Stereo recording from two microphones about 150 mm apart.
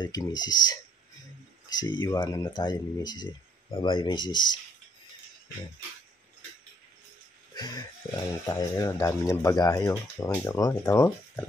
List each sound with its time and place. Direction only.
0.0 s speech: 25° left (ahead or behind)
7.5 s speech: 25° left (ahead or behind)